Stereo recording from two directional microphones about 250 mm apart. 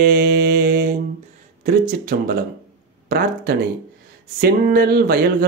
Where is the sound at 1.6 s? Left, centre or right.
Right.